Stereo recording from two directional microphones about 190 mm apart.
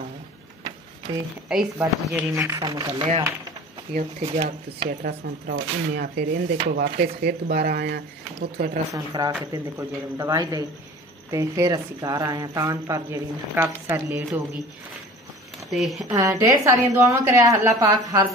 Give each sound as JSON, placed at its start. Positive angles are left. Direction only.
{"t": 1.5, "sound": "speech", "side_deg": 0}
{"t": 2.4, "sound": "speech", "side_deg": -15}
{"t": 3.0, "sound": "speech", "side_deg": -30}
{"t": 8.9, "sound": "speech", "side_deg": -20}
{"t": 15.7, "sound": "speech", "side_deg": 0}
{"t": 16.1, "sound": "speech", "side_deg": -15}